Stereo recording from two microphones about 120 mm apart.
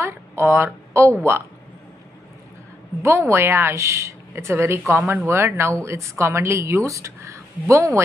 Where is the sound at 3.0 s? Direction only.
20° right (ahead or behind).